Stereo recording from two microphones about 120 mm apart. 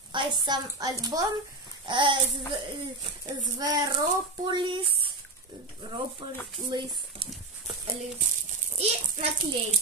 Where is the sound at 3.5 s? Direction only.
30° right (ahead or behind).